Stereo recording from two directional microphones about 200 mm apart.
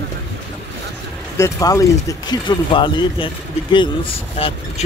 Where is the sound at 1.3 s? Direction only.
15° left (ahead or behind).